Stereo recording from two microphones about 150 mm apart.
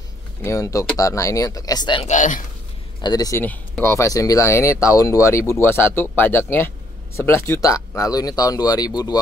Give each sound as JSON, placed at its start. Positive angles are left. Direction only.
{"t": 0.4, "sound": "speech", "side_deg": 20}
{"t": 2.0, "sound": "speech", "side_deg": 55}
{"t": 3.0, "sound": "speech", "side_deg": 25}